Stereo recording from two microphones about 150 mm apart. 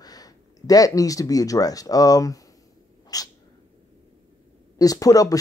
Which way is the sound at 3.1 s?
25° left (ahead or behind).